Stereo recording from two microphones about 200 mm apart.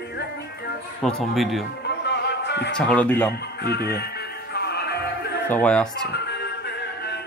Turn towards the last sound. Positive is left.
turn(degrees=5)  # may be behind; listen again after turning